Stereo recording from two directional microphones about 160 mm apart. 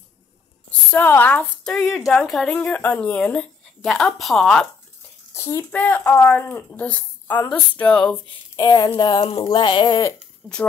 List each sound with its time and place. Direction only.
0.7 s a woman's voice: 10° left (ahead or behind)
5.3 s speech: 15° left (ahead or behind)
8.5 s speech: 25° left (ahead or behind)
10.4 s speech: 10° left (ahead or behind)